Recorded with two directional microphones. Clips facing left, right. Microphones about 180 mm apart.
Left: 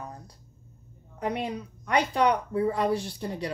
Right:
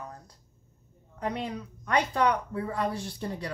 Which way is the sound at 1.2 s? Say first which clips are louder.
Left 2 dB; 15° left (ahead or behind).